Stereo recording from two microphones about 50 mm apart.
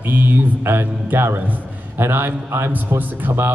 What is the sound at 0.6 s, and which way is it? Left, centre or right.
A man's voice, right.